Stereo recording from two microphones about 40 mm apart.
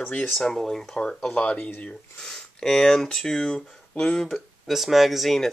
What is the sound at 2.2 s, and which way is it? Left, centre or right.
Speech, centre.